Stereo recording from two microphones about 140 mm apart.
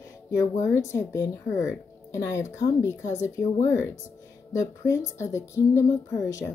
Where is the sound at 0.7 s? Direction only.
20° left (ahead or behind).